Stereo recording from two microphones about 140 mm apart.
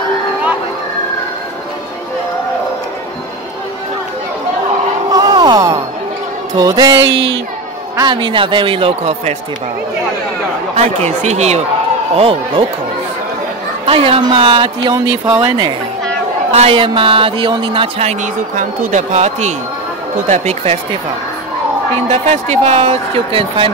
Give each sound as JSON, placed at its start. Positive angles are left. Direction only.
{"t": 5.1, "sound": "a sound", "side_deg": -30}
{"t": 6.5, "sound": "music", "side_deg": -25}
{"t": 8.0, "sound": "speech", "side_deg": -35}
{"t": 10.7, "sound": "speech", "side_deg": -55}
{"t": 12.2, "sound": "speech", "side_deg": -40}
{"t": 13.8, "sound": "speech", "side_deg": -40}
{"t": 15.4, "sound": "music", "side_deg": -30}
{"t": 16.5, "sound": "speech", "side_deg": -40}
{"t": 18.6, "sound": "speech", "side_deg": -65}
{"t": 22.0, "sound": "speech", "side_deg": -50}